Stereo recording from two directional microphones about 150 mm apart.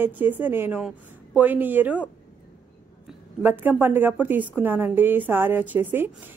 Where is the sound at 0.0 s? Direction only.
15° right (ahead or behind).